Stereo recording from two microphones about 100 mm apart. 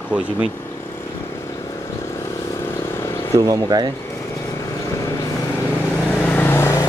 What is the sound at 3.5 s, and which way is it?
Speech, 40° right (ahead or behind).